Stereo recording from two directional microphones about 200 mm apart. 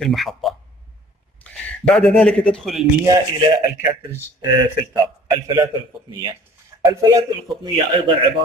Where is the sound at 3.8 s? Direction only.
10° right (ahead or behind).